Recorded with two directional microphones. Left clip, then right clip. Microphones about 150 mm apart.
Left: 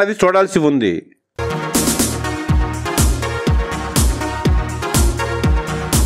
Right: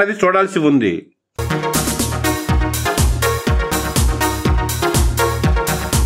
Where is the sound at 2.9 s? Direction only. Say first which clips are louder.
Even; centre (ahead or behind).